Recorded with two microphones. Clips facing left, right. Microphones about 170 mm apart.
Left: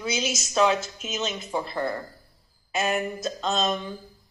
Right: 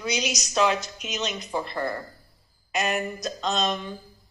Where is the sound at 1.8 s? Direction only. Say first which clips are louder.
Left 2 dB; 20° left (ahead or behind).